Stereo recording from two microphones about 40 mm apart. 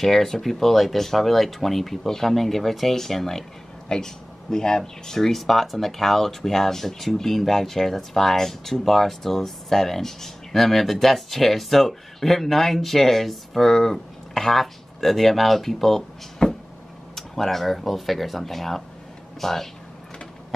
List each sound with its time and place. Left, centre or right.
0.0 s speech: centre
16.4 s a sound: left
17.1 s speech: centre